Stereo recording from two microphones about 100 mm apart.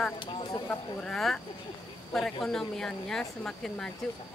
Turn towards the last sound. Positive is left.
turn(degrees=5)  # may be behind; listen again after turning